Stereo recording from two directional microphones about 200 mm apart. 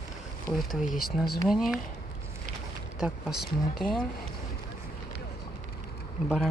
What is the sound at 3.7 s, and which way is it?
Speech, 45° left (ahead or behind).